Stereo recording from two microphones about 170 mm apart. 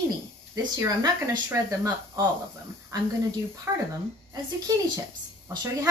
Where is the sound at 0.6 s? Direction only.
20° right (ahead or behind).